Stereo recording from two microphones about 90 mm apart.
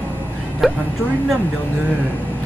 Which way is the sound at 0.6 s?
Centre (ahead or behind).